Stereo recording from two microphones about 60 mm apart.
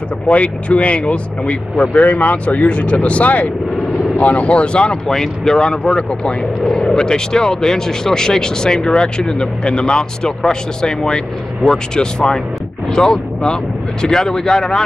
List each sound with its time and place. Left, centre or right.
0.3 s speech: left